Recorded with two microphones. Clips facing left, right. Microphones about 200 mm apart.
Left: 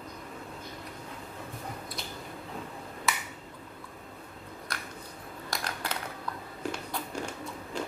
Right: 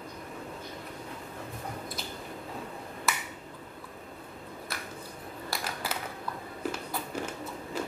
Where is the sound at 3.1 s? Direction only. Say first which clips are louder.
Even; centre (ahead or behind).